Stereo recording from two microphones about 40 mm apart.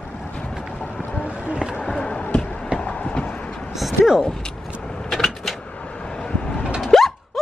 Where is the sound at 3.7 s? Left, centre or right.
Centre.